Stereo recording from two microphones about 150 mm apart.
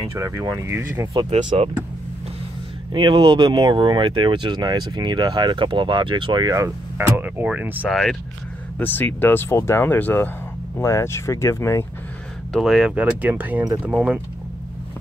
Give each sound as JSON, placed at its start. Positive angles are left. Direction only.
{"t": 0.1, "sound": "speech", "side_deg": -20}
{"t": 1.4, "sound": "speech", "side_deg": -30}
{"t": 2.9, "sound": "speech", "side_deg": -30}
{"t": 7.9, "sound": "speech", "side_deg": 0}
{"t": 12.5, "sound": "speech", "side_deg": 0}